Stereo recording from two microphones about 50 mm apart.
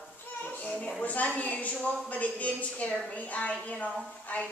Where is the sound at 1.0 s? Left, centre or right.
Left.